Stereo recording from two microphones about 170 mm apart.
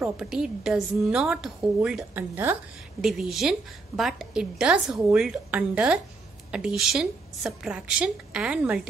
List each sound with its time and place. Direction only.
0.2 s a woman's voice: 5° right (ahead or behind)
3.0 s a woman's voice: centre (ahead or behind)